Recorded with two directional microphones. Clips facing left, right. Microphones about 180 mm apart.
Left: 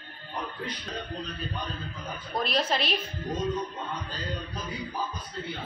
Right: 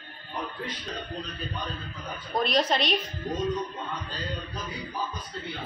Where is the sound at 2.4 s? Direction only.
5° left (ahead or behind).